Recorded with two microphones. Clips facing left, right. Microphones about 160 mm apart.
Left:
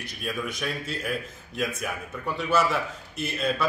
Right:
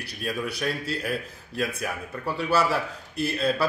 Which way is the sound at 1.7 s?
35° right (ahead or behind).